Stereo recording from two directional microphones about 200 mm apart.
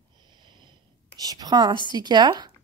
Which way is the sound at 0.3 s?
20° right (ahead or behind).